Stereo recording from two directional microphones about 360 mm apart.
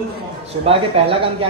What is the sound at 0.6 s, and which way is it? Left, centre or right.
Speech, centre.